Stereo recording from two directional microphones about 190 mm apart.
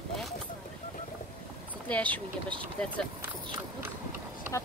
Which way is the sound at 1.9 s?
5° left (ahead or behind).